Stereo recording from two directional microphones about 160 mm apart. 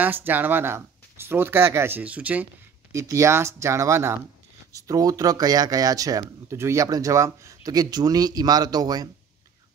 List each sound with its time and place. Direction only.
0.0 s speech: 10° right (ahead or behind)